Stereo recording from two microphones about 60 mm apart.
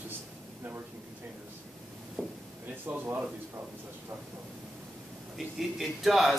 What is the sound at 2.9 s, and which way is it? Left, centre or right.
Speech, right.